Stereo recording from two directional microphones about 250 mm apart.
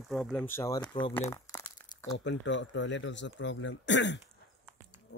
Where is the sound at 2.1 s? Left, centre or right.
Left.